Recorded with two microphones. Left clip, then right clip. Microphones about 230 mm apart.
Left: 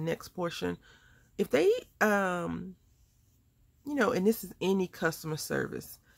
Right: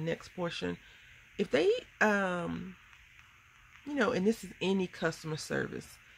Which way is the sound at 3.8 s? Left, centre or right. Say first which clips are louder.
Left 2 dB; centre.